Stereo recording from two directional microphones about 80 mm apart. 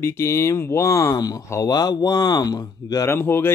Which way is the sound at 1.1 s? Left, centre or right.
Left.